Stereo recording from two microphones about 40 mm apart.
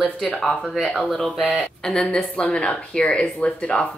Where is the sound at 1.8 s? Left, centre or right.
Left.